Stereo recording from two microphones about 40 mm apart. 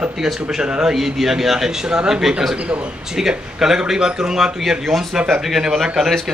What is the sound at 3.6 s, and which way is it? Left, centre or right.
A man's voice, centre.